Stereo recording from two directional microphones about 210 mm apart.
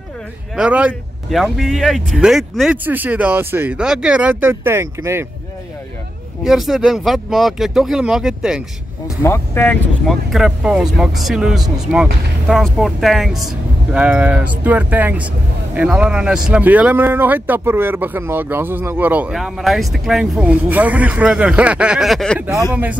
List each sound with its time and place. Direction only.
0.6 s speech: 5° right (ahead or behind)
6.4 s speech: centre (ahead or behind)
9.0 s speech: 10° left (ahead or behind)